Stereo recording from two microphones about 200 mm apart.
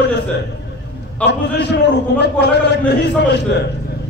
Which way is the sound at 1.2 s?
60° left (ahead or behind).